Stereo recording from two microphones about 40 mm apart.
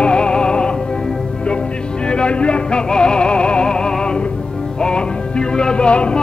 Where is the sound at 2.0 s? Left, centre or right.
Left.